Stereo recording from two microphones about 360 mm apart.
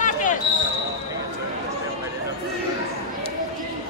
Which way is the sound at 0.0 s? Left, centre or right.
Left.